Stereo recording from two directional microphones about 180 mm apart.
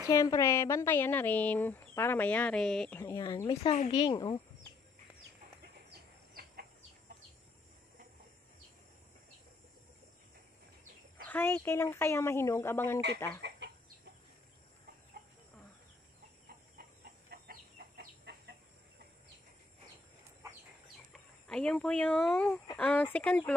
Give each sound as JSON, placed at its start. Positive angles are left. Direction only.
{"t": 0.1, "sound": "speech", "side_deg": 20}
{"t": 3.0, "sound": "speech", "side_deg": 15}
{"t": 3.3, "sound": "speech", "side_deg": 25}
{"t": 5.9, "sound": "chicken", "side_deg": -55}
{"t": 11.2, "sound": "speech", "side_deg": 10}
{"t": 13.6, "sound": "chicken", "side_deg": -75}
{"t": 17.3, "sound": "chicken", "side_deg": -60}
{"t": 21.1, "sound": "speech", "side_deg": 5}